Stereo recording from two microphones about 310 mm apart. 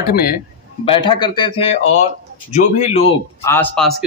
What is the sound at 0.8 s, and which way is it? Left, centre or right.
A man's voice, centre.